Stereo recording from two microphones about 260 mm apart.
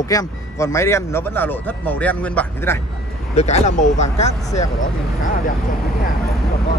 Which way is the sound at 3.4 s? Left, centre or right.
Left.